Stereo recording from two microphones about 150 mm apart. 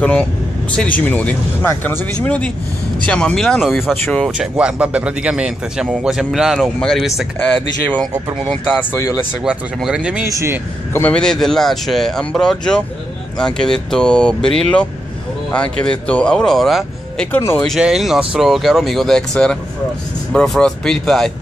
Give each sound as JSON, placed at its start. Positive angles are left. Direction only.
{"t": 0.0, "sound": "speech", "side_deg": 10}
{"t": 8.5, "sound": "speech", "side_deg": 15}
{"t": 9.4, "sound": "speech", "side_deg": -5}
{"t": 10.3, "sound": "speech", "side_deg": -15}
{"t": 10.9, "sound": "speech", "side_deg": 15}
{"t": 17.3, "sound": "speech", "side_deg": 15}
{"t": 17.6, "sound": "speech", "side_deg": -5}